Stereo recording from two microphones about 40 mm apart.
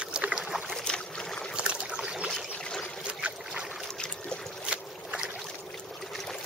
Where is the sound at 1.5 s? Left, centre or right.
Right.